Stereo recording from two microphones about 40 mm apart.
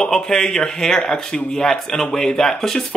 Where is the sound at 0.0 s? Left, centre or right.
Centre.